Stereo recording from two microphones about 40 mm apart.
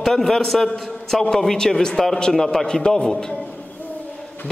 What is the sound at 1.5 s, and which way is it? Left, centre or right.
A man's voice, centre.